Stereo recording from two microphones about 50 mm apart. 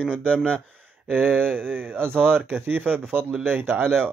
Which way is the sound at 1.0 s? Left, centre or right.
Right.